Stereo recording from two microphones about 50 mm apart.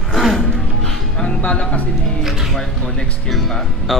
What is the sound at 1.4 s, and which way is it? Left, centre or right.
Speech, left.